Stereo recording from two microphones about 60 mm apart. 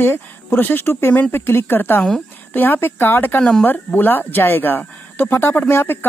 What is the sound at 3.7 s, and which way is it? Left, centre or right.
Speech, left.